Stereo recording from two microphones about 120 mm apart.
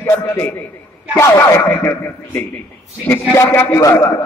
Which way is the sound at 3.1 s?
15° left (ahead or behind).